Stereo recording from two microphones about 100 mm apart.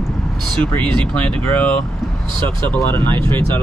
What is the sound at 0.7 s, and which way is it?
Speech, 15° left (ahead or behind).